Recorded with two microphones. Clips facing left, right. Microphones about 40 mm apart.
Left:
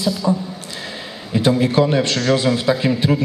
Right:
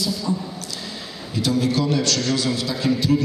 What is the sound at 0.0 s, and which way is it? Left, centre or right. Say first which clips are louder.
A man's voice: left 5 dB; left.